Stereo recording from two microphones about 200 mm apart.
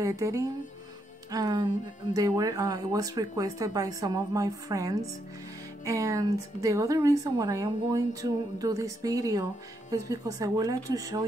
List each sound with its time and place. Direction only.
0.0 s a woman's voice: 15° right (ahead or behind)